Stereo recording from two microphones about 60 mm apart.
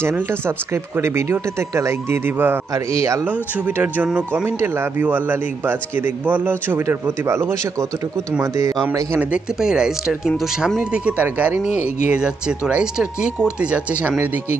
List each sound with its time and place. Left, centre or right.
0.0 s speech: right
2.7 s a man's voice: right
3.3 s speech: right
4.5 s speech: right
5.0 s speech: right
7.2 s speech: right
8.4 s a man's voice: right
9.6 s speech: centre
10.8 s speech: centre